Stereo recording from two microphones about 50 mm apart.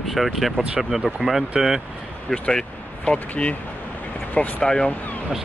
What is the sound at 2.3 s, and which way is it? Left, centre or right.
Speech, centre.